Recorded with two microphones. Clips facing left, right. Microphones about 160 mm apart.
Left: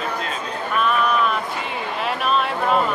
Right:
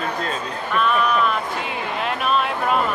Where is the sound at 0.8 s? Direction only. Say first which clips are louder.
Even; centre (ahead or behind).